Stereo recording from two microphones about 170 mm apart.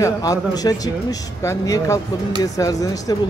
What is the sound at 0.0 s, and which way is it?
Speech, 20° left (ahead or behind).